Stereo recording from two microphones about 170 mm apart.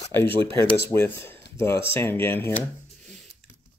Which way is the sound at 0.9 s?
15° left (ahead or behind).